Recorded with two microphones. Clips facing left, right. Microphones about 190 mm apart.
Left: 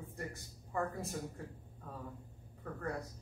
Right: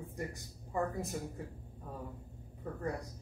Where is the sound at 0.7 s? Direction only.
15° right (ahead or behind).